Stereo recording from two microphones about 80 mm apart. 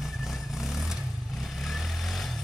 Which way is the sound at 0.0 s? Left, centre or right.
Centre.